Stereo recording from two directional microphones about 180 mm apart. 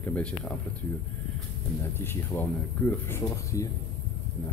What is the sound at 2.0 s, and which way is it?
Speech, 10° left (ahead or behind).